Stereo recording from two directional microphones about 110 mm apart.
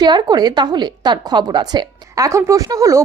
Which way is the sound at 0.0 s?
40° right (ahead or behind).